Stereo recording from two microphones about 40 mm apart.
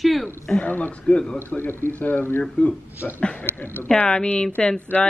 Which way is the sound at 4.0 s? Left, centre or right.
Left.